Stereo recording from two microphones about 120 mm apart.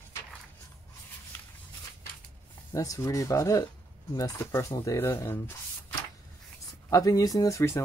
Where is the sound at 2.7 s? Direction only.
25° left (ahead or behind).